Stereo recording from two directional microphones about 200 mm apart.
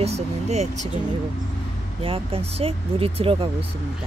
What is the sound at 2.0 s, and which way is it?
Speech, 30° right (ahead or behind).